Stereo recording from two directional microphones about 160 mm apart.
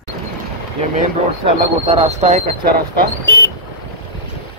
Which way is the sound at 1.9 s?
45° right (ahead or behind).